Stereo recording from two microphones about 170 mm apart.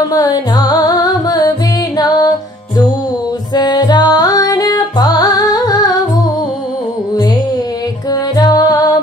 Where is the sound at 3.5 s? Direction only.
25° left (ahead or behind).